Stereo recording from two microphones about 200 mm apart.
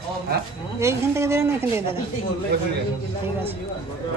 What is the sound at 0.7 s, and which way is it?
Speech, 15° right (ahead or behind).